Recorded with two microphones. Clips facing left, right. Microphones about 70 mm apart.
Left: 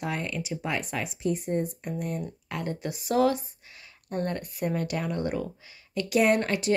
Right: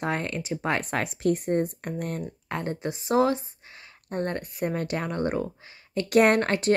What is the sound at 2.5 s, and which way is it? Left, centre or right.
A woman's voice, right.